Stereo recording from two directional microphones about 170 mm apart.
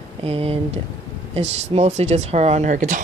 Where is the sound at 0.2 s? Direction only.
35° right (ahead or behind).